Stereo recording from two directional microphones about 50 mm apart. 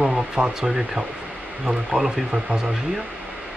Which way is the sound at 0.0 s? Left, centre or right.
Centre.